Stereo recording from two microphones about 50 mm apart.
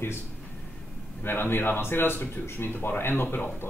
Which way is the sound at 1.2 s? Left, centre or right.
Left.